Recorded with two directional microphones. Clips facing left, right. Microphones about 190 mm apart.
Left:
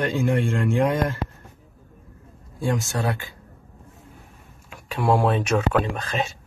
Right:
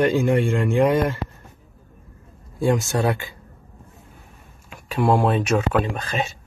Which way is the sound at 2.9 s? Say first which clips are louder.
Right 5 dB; 15° right (ahead or behind).